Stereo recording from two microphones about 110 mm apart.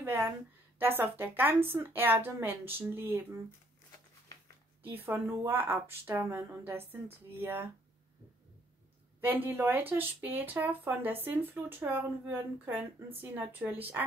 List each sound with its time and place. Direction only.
0.0 s a woman's voice: 20° right (ahead or behind)
4.3 s a sound: 35° left (ahead or behind)
4.8 s speech: 20° right (ahead or behind)
9.2 s speech: 20° right (ahead or behind)